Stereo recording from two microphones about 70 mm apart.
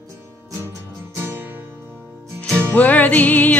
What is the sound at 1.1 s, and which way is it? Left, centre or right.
Music, right.